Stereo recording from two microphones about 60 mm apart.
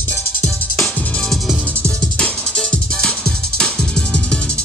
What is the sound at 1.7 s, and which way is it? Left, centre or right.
Music, left.